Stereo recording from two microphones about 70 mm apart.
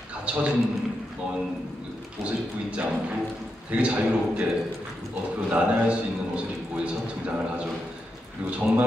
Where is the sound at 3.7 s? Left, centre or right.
Centre.